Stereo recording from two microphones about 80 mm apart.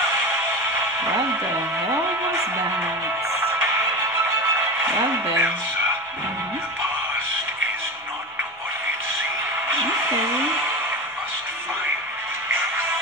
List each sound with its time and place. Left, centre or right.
4.8 s music: right